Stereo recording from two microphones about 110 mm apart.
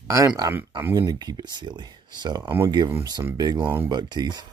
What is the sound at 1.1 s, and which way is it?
Speech, 40° right (ahead or behind).